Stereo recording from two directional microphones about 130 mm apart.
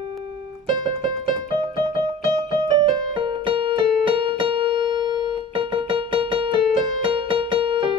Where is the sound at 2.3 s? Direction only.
30° right (ahead or behind).